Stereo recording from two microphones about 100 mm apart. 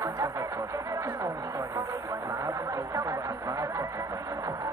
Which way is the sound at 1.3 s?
35° right (ahead or behind).